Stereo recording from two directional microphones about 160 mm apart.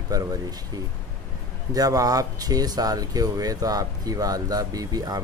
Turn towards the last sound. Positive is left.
turn(degrees=-25)  # may be behind; listen again after turning